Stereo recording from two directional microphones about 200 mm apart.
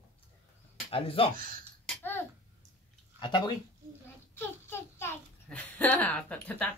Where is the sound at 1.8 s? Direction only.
10° left (ahead or behind).